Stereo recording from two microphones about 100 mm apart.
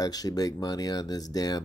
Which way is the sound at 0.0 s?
40° left (ahead or behind).